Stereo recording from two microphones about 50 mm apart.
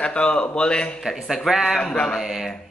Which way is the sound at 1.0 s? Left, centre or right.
Centre.